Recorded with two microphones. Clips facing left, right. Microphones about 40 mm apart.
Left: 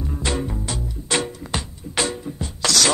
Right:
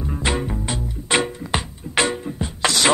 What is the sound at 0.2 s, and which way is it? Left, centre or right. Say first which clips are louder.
Music: right 2 dB; right.